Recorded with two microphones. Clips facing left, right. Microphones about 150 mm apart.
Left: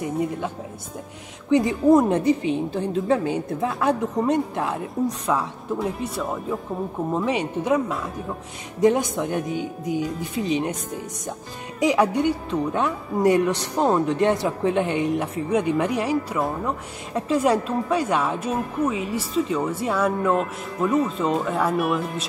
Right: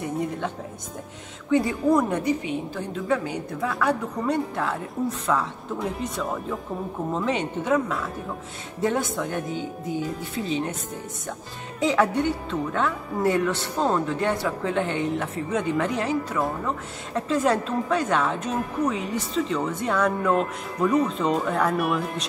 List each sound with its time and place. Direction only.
1.5 s a woman's voice: 20° left (ahead or behind)
8.8 s a woman's voice: 15° left (ahead or behind)
11.8 s a woman's voice: 15° left (ahead or behind)